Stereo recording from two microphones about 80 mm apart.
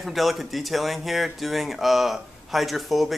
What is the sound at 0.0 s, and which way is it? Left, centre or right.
Speech, centre.